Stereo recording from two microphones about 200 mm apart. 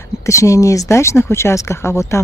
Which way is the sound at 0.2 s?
15° left (ahead or behind).